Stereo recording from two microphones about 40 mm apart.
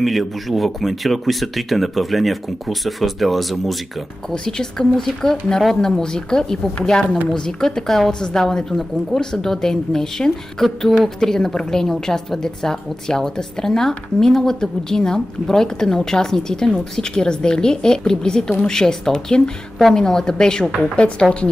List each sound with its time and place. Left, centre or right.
0.0 s speech: centre
4.3 s a woman's voice: centre
20.9 s a woman's voice: left